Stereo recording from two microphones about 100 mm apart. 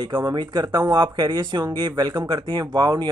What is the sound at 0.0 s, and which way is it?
Speech, 50° right (ahead or behind).